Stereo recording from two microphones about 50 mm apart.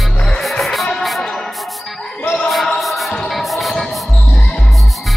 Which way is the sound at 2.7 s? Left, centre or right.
Centre.